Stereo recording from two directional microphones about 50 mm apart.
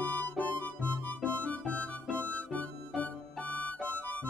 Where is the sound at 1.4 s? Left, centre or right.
Left.